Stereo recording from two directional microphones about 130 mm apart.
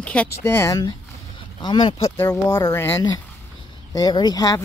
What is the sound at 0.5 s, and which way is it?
Speech, 30° left (ahead or behind).